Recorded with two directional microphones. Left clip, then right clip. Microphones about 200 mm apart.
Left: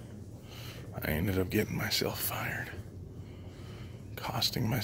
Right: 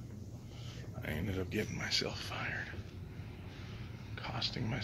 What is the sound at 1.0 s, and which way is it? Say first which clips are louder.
Speech: left 7 dB; 50° left (ahead or behind).